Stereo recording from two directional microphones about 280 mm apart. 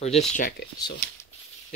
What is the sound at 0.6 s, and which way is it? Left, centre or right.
Speech, left.